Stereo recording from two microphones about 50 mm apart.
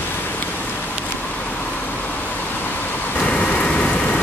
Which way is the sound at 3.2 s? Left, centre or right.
Left.